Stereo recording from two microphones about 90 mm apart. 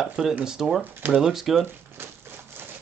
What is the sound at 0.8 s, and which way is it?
Speech, 20° right (ahead or behind).